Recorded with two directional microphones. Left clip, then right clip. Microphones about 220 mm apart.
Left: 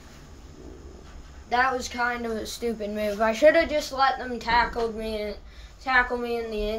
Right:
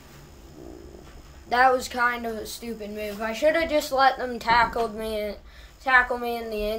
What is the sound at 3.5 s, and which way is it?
Speech, centre (ahead or behind).